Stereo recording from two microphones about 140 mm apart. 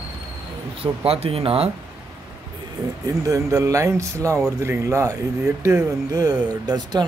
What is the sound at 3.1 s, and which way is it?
Speech, 25° right (ahead or behind).